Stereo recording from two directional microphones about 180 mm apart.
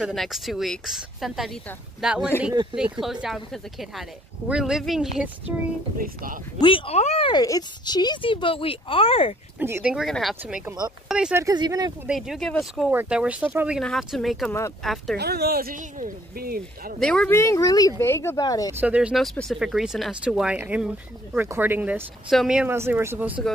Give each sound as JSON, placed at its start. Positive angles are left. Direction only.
{"t": 0.0, "sound": "speech", "side_deg": 0}
{"t": 5.9, "sound": "speech", "side_deg": -50}
{"t": 6.6, "sound": "speech", "side_deg": 30}
{"t": 9.6, "sound": "speech", "side_deg": -10}
{"t": 9.9, "sound": "speech", "side_deg": 0}
{"t": 11.3, "sound": "speech", "side_deg": -20}
{"t": 12.1, "sound": "speech", "side_deg": 0}
{"t": 15.1, "sound": "speech", "side_deg": -60}
{"t": 17.0, "sound": "speech", "side_deg": 5}
{"t": 17.4, "sound": "a child's voice", "side_deg": 15}
{"t": 18.7, "sound": "speech", "side_deg": -10}